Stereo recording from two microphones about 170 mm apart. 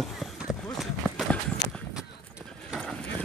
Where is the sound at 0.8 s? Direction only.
Centre (ahead or behind).